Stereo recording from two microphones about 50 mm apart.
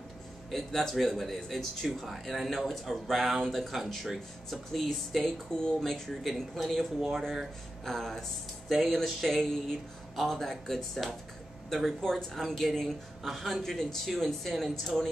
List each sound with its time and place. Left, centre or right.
0.5 s speech: centre